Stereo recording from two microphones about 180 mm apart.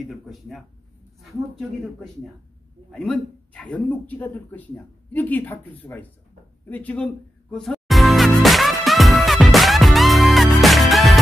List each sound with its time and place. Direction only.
0.0 s speech: centre (ahead or behind)
7.5 s music: centre (ahead or behind)